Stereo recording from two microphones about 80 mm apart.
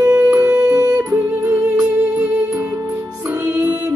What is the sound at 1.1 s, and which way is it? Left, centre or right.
Music, right.